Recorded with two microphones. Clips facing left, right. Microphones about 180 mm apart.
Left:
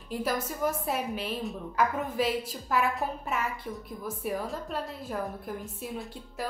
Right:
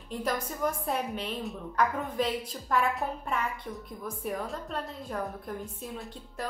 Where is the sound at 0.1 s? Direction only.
5° left (ahead or behind).